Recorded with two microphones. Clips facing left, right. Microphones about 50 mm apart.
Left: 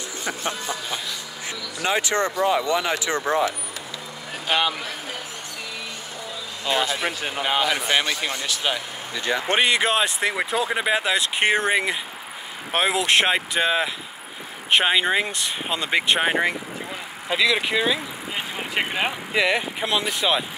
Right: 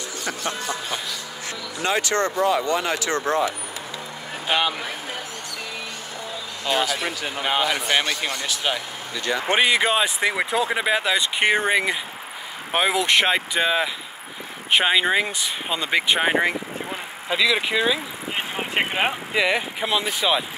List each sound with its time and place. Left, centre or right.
0.2 s a sound: centre
4.5 s speech: centre
6.6 s speech: centre
6.9 s a sound: left
7.4 s speech: centre
9.1 s a sound: left
9.5 s speech: centre
18.8 s speech: right
19.3 s speech: centre